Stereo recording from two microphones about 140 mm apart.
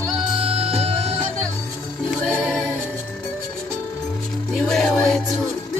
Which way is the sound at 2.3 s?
5° left (ahead or behind).